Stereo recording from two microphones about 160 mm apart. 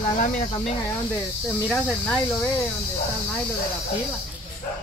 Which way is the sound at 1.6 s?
Centre (ahead or behind).